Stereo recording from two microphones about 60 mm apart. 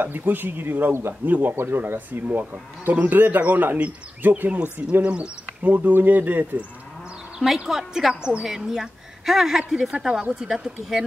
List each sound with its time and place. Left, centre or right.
0.0 s a woman's voice: right; by 5.3 s centre
5.6 s speech: right
7.3 s a woman's voice: centre